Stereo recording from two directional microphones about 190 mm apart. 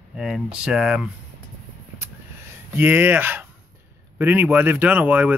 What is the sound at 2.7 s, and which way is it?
Speech, 10° right (ahead or behind).